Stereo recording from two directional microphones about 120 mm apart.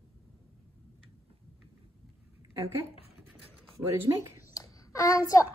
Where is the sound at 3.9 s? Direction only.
25° right (ahead or behind).